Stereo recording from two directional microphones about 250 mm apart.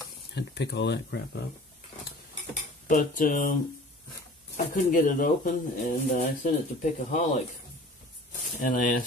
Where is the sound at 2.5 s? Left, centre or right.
Left.